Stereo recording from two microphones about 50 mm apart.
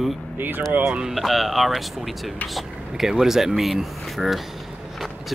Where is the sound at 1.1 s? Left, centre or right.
Centre.